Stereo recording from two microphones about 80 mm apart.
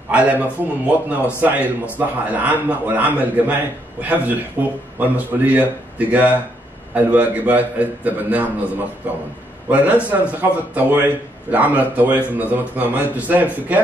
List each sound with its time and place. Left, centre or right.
0.1 s speech: centre
10.0 s speech: centre